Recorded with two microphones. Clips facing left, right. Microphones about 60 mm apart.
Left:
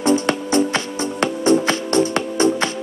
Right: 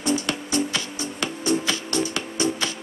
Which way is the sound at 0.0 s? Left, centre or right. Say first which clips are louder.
Left 7 dB; left.